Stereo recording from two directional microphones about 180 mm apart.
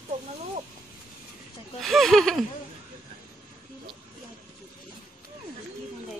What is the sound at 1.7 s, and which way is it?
Speech, centre (ahead or behind).